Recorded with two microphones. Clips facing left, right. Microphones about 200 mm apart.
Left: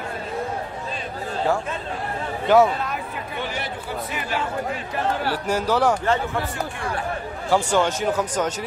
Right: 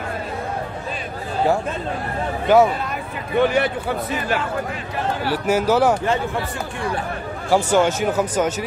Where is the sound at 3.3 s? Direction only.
60° right (ahead or behind).